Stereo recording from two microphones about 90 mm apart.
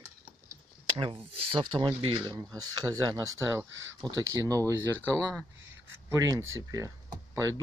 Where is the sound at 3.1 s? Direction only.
30° right (ahead or behind).